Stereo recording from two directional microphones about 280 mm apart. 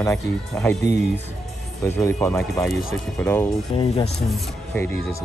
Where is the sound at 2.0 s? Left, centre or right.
Centre.